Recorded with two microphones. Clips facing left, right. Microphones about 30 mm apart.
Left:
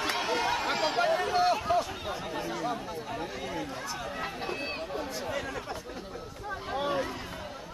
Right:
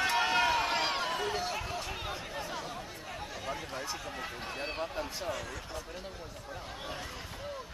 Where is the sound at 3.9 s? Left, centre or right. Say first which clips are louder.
Left 4 dB; centre.